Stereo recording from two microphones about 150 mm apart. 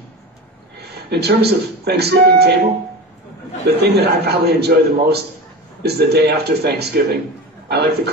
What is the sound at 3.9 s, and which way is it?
Speech, 90° right.